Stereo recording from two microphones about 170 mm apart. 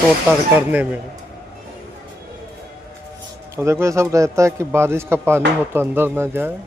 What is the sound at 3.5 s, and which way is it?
Speech, 15° right (ahead or behind).